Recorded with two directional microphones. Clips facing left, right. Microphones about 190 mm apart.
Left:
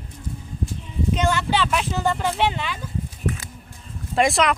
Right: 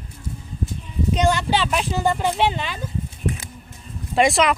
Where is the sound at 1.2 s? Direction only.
15° right (ahead or behind).